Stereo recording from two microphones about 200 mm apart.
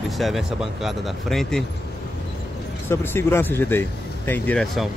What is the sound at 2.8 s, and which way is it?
Speech, 10° left (ahead or behind).